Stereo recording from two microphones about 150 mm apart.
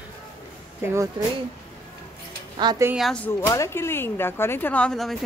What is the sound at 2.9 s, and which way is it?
Speech, centre (ahead or behind).